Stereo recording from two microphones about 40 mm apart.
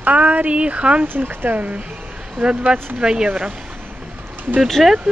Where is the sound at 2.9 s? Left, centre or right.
Right.